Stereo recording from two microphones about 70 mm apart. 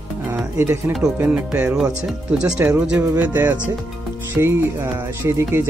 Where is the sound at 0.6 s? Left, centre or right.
Right.